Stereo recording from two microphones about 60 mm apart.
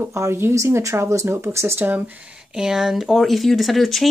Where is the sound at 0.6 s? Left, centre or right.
Right.